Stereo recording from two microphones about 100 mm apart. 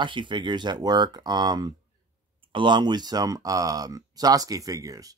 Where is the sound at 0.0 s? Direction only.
55° right (ahead or behind).